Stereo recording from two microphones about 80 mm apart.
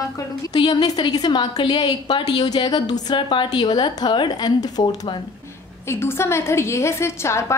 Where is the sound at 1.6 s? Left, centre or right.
Left.